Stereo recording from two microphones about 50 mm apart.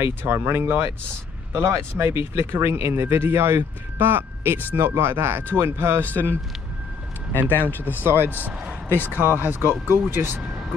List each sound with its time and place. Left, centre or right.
0.0 s speech: right
6.0 s speech: left
7.3 s speech: left
8.0 s speech: right